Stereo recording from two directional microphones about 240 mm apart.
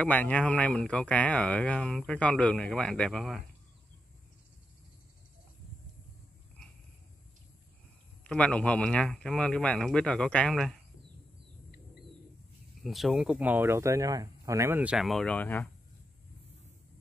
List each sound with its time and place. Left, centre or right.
0.0 s speech: centre
8.2 s speech: centre
12.8 s speech: centre